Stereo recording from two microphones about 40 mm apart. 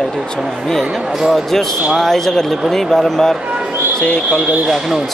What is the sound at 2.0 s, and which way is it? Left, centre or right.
Speech, centre.